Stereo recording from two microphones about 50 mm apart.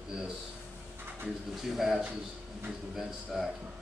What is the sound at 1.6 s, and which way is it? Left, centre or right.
A man's voice, centre.